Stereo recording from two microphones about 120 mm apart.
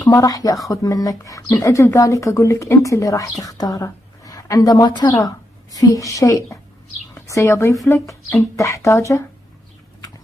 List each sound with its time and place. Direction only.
0.1 s a woman's voice: 30° left (ahead or behind)